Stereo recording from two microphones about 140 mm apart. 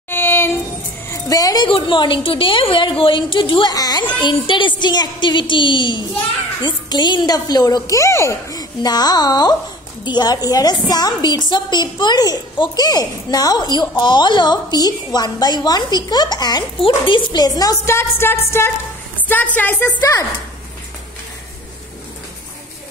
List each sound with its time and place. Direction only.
0.1 s child singing: 15° left (ahead or behind)
1.1 s a woman's voice: 25° left (ahead or behind)